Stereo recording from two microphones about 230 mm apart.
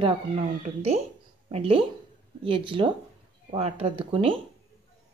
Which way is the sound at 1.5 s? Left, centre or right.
Right.